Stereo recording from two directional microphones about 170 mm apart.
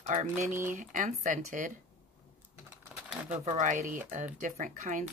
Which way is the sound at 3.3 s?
45° right (ahead or behind).